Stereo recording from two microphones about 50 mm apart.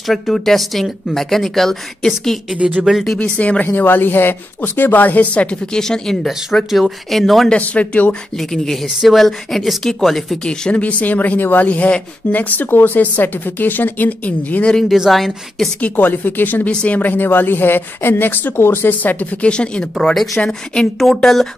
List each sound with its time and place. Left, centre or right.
0.0 s speech: centre
3.2 s speech: left
5.8 s speech: centre
7.6 s speech: left
8.1 s speech: centre
10.4 s speech: centre
10.8 s speech: left
14.9 s speech: centre
15.8 s speech: left
16.6 s a woman's voice: left
18.9 s speech: left
19.5 s speech: left
21.0 s speech: centre